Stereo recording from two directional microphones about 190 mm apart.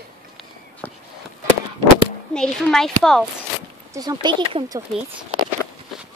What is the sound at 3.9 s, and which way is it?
Speech, 20° right (ahead or behind).